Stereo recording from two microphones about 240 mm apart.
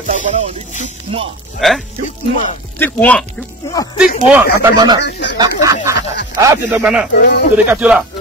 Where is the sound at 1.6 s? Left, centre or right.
Centre.